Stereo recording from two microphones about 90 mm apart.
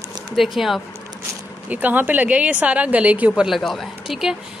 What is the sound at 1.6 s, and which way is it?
A woman's voice, 20° right (ahead or behind).